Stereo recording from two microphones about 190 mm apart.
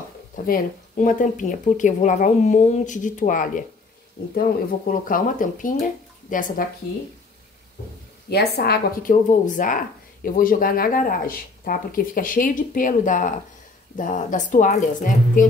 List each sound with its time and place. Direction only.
0.5 s speech: 45° left (ahead or behind)
8.3 s a woman's voice: 55° left (ahead or behind)
9.3 s speech: 45° left (ahead or behind)